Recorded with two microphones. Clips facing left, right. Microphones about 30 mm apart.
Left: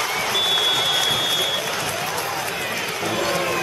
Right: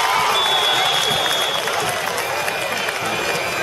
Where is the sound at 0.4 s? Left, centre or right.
Right.